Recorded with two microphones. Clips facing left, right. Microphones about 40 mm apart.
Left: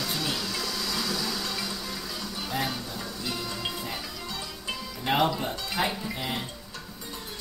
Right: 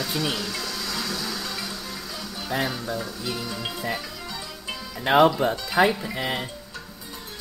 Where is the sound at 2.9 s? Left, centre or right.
Centre.